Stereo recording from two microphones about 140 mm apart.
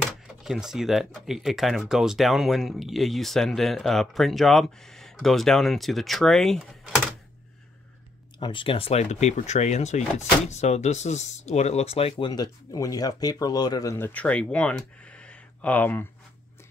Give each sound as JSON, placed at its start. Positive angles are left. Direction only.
{"t": 0.1, "sound": "speech", "side_deg": 0}
{"t": 8.4, "sound": "speech", "side_deg": 35}
{"t": 12.3, "sound": "speech", "side_deg": 25}
{"t": 13.9, "sound": "speech", "side_deg": 10}